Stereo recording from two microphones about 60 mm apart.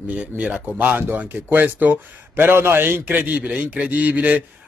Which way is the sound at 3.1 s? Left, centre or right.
Right.